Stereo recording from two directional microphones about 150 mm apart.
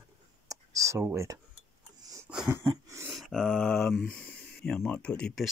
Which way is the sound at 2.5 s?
15° right (ahead or behind).